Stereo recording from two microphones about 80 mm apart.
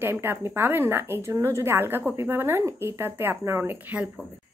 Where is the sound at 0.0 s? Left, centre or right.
Right.